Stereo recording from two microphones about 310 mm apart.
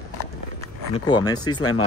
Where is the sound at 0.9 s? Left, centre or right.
Centre.